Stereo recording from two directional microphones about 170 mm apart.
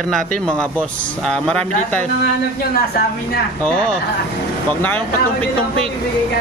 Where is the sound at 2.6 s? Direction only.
65° left (ahead or behind).